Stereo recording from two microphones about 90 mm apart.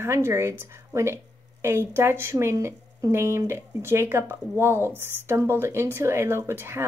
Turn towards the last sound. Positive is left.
turn(degrees=-25)  # may be behind; listen again after turning